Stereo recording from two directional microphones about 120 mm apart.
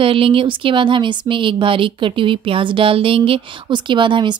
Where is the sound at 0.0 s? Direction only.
50° right (ahead or behind).